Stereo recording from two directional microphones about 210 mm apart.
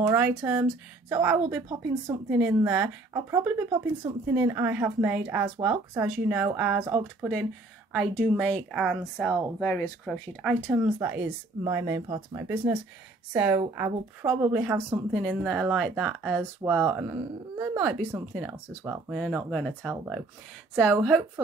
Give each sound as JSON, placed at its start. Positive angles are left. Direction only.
{"t": 0.0, "sound": "speech", "side_deg": -10}
{"t": 6.9, "sound": "speech", "side_deg": -15}
{"t": 7.9, "sound": "speech", "side_deg": 0}
{"t": 10.7, "sound": "speech", "side_deg": -15}